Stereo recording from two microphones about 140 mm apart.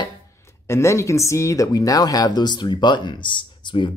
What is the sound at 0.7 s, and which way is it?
Speech, 20° left (ahead or behind).